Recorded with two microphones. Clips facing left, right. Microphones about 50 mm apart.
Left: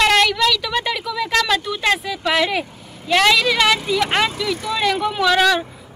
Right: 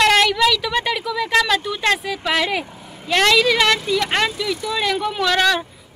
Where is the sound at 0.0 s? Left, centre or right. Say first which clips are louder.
Even; centre.